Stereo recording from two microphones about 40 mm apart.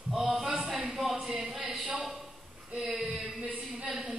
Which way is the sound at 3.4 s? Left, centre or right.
Right.